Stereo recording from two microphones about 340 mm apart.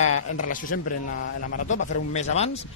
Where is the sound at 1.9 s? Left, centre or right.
Centre.